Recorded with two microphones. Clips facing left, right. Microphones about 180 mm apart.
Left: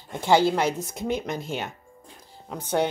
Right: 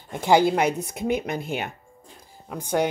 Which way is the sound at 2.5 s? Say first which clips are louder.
Right 1 dB; 10° right (ahead or behind).